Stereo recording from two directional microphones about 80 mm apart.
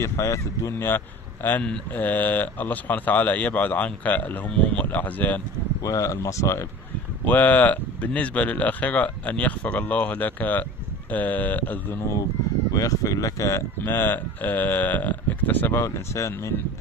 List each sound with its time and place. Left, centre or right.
0.0 s speech: left
5.8 s speech: left
7.2 s speech: left
12.7 s speech: left
13.7 s speech: left
15.8 s speech: left